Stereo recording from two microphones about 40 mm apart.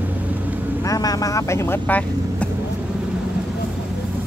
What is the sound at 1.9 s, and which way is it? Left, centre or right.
Speech, left.